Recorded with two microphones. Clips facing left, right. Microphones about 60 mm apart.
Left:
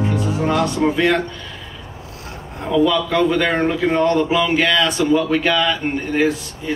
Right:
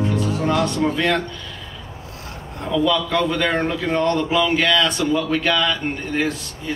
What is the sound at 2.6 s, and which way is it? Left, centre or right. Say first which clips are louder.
A man's voice: left 3 dB; left.